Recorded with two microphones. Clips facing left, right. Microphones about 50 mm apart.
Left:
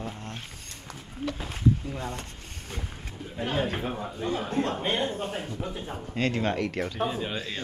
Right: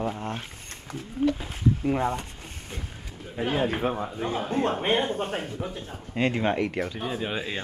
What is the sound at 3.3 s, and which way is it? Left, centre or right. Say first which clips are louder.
Speech: right 3 dB; centre.